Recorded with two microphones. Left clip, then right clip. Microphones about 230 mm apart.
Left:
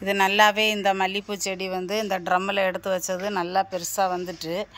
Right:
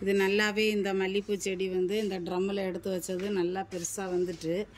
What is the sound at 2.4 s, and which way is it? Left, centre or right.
Speech, centre.